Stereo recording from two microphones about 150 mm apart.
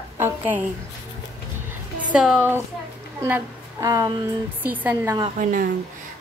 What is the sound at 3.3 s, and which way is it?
Speech, 15° right (ahead or behind).